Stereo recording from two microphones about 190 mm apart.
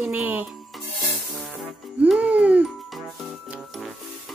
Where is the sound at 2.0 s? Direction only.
5° right (ahead or behind).